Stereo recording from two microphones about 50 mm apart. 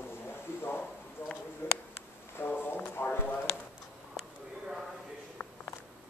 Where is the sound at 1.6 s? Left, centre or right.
Left.